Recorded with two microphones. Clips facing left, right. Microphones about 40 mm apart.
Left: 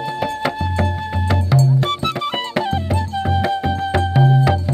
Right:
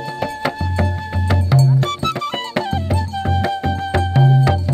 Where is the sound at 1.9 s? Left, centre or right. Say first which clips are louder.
Even; centre.